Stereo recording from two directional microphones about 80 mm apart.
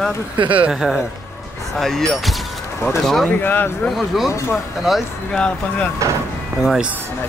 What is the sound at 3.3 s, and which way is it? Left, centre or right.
Speech, left.